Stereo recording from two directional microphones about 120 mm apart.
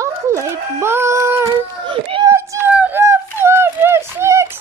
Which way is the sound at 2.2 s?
25° right (ahead or behind).